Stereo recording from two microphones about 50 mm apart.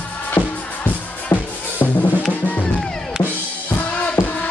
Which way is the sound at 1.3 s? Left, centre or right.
Left.